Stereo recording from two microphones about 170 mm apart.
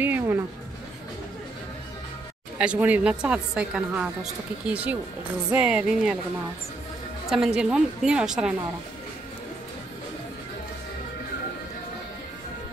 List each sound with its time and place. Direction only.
0.0 s music: 10° right (ahead or behind)
2.6 s a woman's voice: 5° right (ahead or behind)
5.5 s a woman's voice: 10° right (ahead or behind)
7.2 s a woman's voice: 5° right (ahead or behind)